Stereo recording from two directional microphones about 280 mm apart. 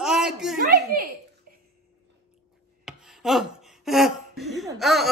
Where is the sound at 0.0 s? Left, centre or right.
Centre.